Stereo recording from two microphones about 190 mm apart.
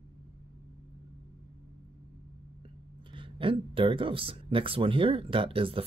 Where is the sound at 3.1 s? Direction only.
25° right (ahead or behind).